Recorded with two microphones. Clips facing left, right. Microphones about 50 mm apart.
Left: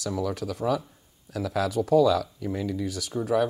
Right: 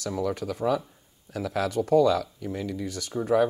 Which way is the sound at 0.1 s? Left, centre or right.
Centre.